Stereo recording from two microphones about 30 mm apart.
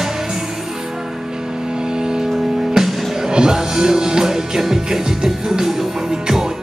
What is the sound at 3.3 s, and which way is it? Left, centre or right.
Music, right.